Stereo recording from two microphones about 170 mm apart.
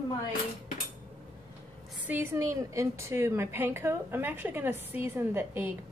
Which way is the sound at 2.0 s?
15° right (ahead or behind).